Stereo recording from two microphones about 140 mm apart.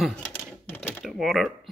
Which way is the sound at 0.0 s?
5° left (ahead or behind).